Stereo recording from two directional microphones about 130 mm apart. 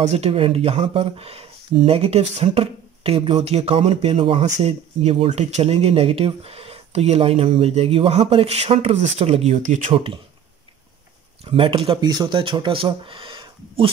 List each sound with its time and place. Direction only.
0.0 s speech: 55° right (ahead or behind); by 9.9 s 75° right (ahead or behind)
11.4 s speech: 45° right (ahead or behind)
12.0 s speech: 30° right (ahead or behind)